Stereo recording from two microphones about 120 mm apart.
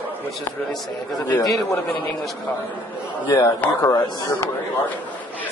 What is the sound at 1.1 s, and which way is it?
Speech, 35° left (ahead or behind).